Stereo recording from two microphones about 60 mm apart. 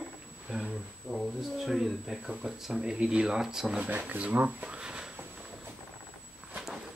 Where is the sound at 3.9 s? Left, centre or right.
Right.